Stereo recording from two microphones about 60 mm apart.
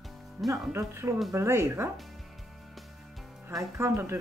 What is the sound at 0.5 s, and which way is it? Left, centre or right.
Speech, right.